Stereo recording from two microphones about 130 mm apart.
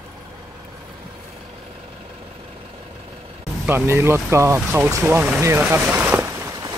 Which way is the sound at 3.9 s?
20° right (ahead or behind).